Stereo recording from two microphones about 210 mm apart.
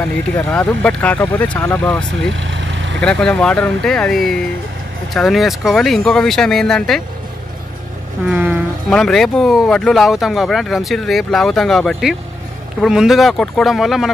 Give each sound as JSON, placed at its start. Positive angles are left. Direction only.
{"t": 0.4, "sound": "speech", "side_deg": 5}
{"t": 2.4, "sound": "vehicle", "side_deg": -60}
{"t": 3.0, "sound": "speech", "side_deg": 5}
{"t": 8.3, "sound": "speech", "side_deg": -5}